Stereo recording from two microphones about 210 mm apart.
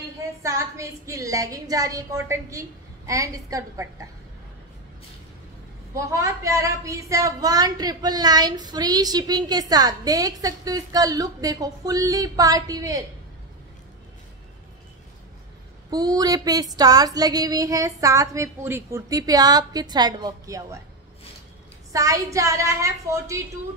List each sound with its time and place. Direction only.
0.4 s speech: 15° right (ahead or behind)
6.1 s speech: 15° right (ahead or behind)
15.9 s speech: 20° right (ahead or behind)
21.9 s speech: 15° right (ahead or behind)